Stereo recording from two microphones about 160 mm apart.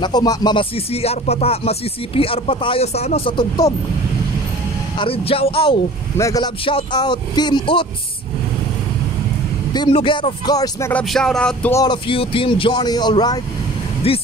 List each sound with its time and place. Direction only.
0.0 s music: 25° left (ahead or behind)
4.9 s music: 35° left (ahead or behind)
6.1 s speech: 20° left (ahead or behind)
6.6 s speech: 30° left (ahead or behind)
9.8 s speech: 30° left (ahead or behind)
10.9 s a sound: 5° left (ahead or behind)
11.7 s speech: 25° left (ahead or behind)
14.0 s speech: 35° left (ahead or behind)